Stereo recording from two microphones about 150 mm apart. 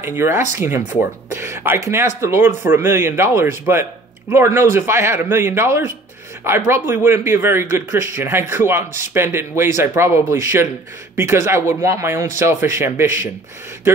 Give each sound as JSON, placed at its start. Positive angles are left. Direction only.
{"t": 0.0, "sound": "speech", "side_deg": -15}